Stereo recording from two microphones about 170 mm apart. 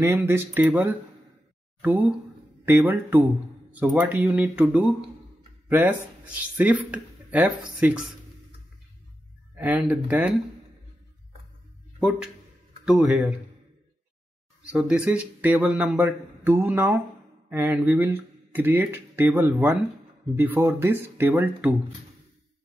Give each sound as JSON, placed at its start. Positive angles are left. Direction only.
{"t": 0.0, "sound": "a man's voice", "side_deg": -15}
{"t": 9.6, "sound": "a man's voice", "side_deg": -10}
{"t": 12.0, "sound": "a man's voice", "side_deg": -5}
{"t": 14.7, "sound": "a man's voice", "side_deg": -5}